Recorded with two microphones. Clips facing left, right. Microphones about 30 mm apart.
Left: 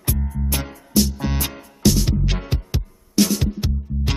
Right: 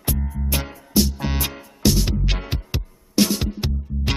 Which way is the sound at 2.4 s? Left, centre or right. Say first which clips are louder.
Left 2 dB; centre.